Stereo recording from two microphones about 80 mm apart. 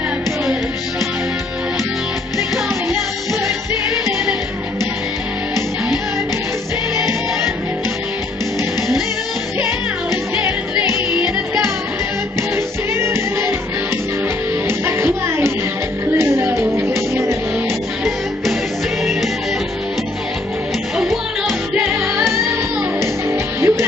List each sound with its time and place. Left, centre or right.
7.0 s music: right
10.3 s music: right
12.9 s music: right
14.7 s music: right
22.0 s music: right